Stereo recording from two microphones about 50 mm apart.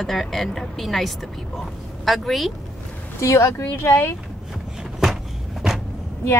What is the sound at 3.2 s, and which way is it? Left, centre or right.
Speech, left.